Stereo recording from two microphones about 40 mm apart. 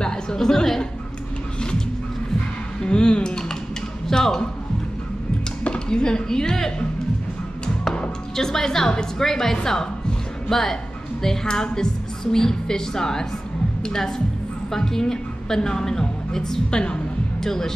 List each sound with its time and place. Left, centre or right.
0.0 s music: centre
2.8 s a sound: left
4.1 s speech: centre
5.6 s a sound: left
8.4 s a woman's voice: centre
11.4 s a woman's voice: centre
16.7 s a woman's voice: left
17.4 s speech: centre